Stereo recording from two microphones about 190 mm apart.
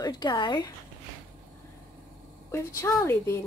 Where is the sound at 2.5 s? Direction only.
15° left (ahead or behind).